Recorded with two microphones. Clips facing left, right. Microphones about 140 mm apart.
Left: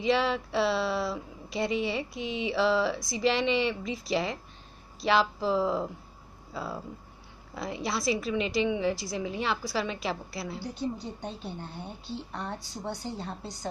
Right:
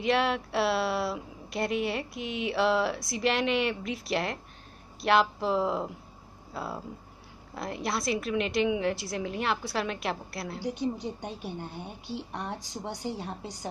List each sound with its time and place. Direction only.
0.0 s a woman's voice: centre (ahead or behind)
10.6 s a woman's voice: 15° right (ahead or behind)